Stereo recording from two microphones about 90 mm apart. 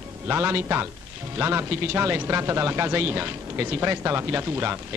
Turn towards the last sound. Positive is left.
turn(degrees=-25)  # may be behind; listen again after turning